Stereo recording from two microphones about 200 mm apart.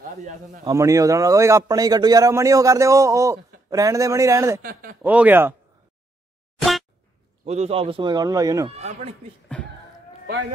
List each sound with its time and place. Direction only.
0.7 s a man's voice: 15° right (ahead or behind)
4.6 s speech: 45° right (ahead or behind)
5.0 s a man's voice: 10° right (ahead or behind)
7.4 s speech: 30° right (ahead or behind); by 8.7 s 15° right (ahead or behind)
8.7 s speech: 35° right (ahead or behind)